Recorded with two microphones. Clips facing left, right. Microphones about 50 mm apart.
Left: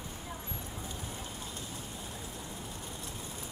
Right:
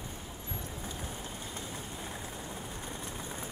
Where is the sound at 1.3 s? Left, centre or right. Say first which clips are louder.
Right 1 dB; right.